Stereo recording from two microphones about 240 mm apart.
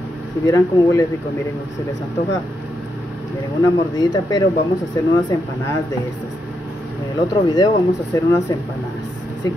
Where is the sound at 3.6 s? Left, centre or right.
Centre.